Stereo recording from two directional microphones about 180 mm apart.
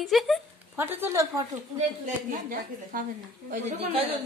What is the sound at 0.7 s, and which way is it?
Speech, 10° right (ahead or behind).